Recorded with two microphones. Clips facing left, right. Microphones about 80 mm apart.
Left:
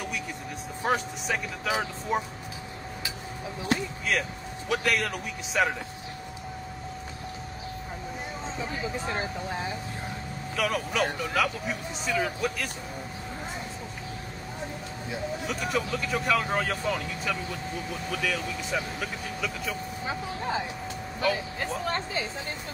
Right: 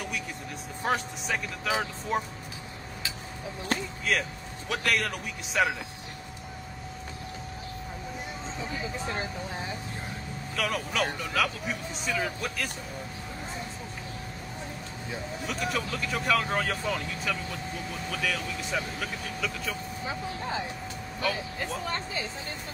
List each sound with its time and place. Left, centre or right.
0.8 s speech: centre
4.0 s speech: centre
10.5 s speech: centre
15.4 s speech: centre
21.2 s speech: left